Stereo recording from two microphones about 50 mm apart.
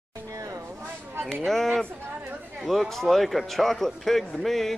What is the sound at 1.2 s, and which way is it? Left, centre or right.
A man's voice, centre.